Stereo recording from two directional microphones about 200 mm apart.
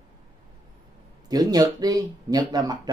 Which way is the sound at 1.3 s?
20° right (ahead or behind).